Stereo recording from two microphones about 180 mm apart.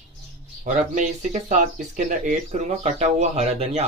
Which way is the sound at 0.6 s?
45° right (ahead or behind).